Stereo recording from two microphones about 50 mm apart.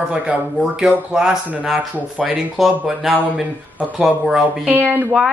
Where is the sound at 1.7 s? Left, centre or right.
Right.